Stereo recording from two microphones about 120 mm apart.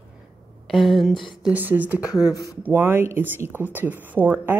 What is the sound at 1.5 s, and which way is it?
Speech, 15° right (ahead or behind).